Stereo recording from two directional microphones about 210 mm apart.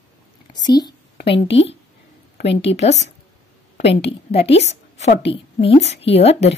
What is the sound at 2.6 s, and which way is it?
Speech, 30° left (ahead or behind).